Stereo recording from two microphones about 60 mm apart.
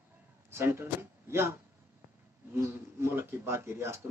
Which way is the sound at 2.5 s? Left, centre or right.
Right.